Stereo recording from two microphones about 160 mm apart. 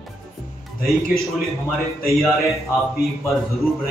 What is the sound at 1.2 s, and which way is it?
A man's voice, centre (ahead or behind).